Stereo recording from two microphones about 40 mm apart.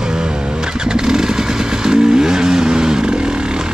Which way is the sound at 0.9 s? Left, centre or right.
Centre.